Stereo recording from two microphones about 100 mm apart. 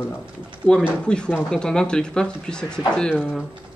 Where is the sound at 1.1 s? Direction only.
10° left (ahead or behind).